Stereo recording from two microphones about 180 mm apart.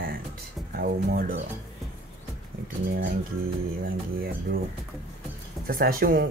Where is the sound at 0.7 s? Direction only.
55° right (ahead or behind).